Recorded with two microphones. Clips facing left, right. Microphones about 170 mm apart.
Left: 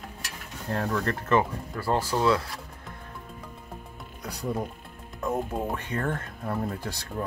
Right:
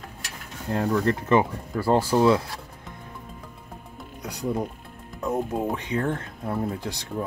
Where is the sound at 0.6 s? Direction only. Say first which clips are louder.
Right 5 dB; 10° right (ahead or behind).